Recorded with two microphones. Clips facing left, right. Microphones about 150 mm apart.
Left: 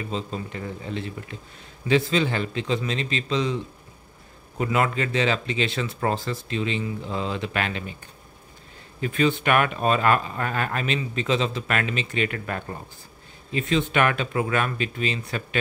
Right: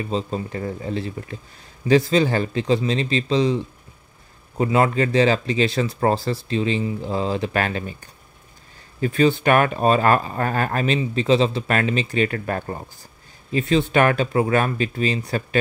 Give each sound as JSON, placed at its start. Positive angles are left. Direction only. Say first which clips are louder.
{"t": 0.0, "sound": "speech", "louder": "right 5 dB", "side_deg": -40}
{"t": 9.0, "sound": "speech", "louder": "right 5 dB", "side_deg": -35}